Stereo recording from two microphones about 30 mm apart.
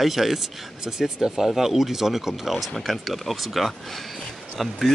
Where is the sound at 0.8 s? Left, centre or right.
Centre.